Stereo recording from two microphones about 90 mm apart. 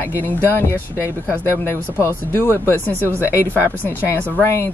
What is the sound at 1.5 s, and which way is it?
Speech, 30° left (ahead or behind).